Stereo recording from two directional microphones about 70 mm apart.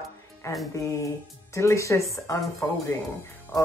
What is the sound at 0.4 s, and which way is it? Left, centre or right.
Speech, left.